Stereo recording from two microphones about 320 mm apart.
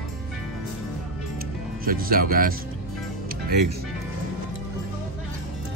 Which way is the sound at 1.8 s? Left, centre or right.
Right.